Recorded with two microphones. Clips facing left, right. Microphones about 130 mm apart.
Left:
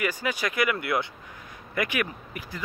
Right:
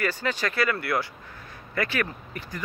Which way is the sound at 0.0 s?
10° left (ahead or behind).